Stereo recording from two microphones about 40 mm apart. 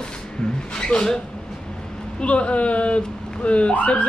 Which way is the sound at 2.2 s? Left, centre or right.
Left.